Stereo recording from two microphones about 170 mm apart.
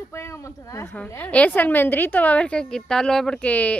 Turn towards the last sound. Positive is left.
turn(degrees=10)  # may be behind; listen again after turning